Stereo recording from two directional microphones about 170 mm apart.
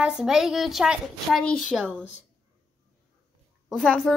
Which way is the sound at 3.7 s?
Centre (ahead or behind).